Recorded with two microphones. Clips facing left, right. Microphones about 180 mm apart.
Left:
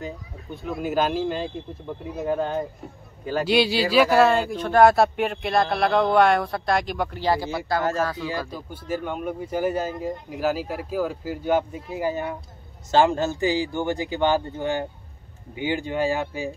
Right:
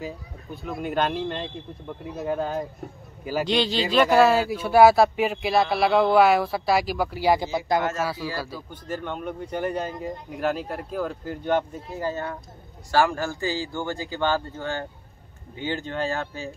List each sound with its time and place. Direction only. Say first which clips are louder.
0.0 s speech: even; centre (ahead or behind)
8.5 s speech: left 3 dB; 10° left (ahead or behind)